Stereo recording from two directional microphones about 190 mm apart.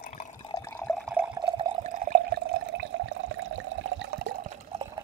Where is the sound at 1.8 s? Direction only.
45° right (ahead or behind); by 4.3 s 70° right (ahead or behind).